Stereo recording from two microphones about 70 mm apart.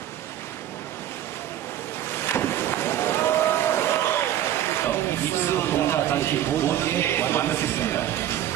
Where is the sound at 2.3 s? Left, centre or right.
Left.